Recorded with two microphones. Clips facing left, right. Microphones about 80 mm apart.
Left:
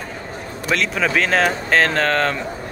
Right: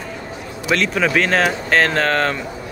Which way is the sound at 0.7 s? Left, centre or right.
Centre.